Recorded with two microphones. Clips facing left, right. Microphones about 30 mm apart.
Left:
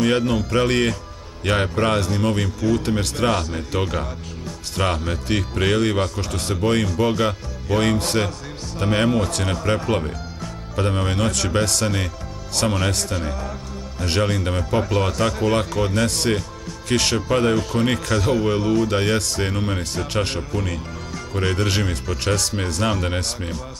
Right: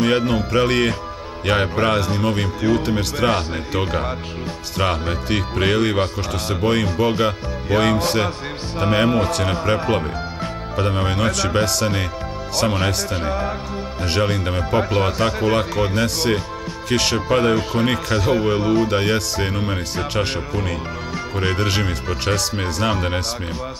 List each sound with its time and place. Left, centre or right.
0.0 s music: centre
0.5 s speech: centre
3.3 s speech: right
4.7 s speech: centre
12.7 s speech: right
14.0 s speech: centre